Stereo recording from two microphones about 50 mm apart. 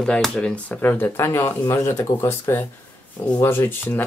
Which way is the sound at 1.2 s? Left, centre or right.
Left.